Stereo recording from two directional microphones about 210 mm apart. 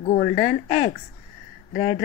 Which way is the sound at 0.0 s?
30° left (ahead or behind).